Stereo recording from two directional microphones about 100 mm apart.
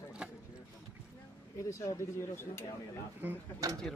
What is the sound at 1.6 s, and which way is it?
Speech, 30° left (ahead or behind).